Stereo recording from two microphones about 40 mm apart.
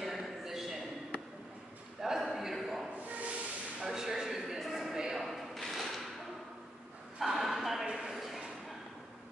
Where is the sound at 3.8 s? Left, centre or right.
Centre.